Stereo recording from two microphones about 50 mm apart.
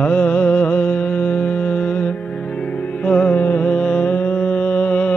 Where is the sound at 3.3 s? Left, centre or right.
Left.